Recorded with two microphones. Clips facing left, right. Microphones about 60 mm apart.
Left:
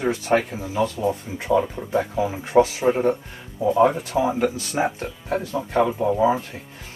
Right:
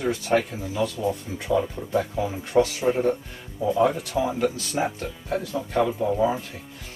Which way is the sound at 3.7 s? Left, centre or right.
Left.